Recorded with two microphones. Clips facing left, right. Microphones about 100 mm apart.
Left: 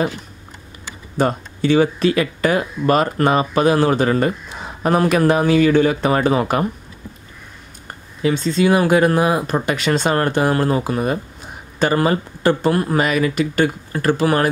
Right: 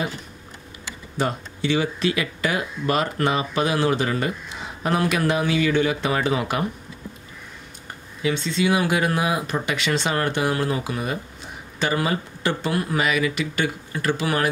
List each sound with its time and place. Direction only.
1.1 s speech: 45° left (ahead or behind)
8.2 s speech: 40° left (ahead or behind)